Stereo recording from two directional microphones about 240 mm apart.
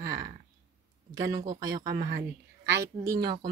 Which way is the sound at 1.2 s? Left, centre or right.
Centre.